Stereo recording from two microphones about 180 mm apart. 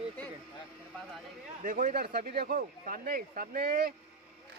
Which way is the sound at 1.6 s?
45° right (ahead or behind).